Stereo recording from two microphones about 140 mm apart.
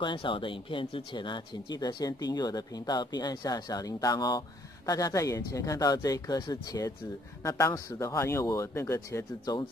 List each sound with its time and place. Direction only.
0.0 s speech: 35° left (ahead or behind)